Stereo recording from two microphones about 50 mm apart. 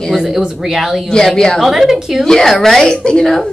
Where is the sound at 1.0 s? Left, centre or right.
Centre.